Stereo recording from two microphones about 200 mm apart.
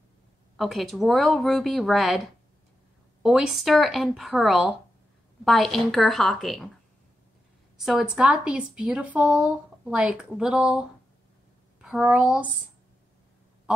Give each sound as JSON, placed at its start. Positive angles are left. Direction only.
{"t": 0.6, "sound": "speech", "side_deg": 0}
{"t": 7.8, "sound": "speech", "side_deg": -5}